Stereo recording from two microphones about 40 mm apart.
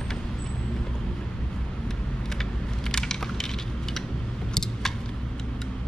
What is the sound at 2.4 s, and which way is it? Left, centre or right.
Crushing, centre.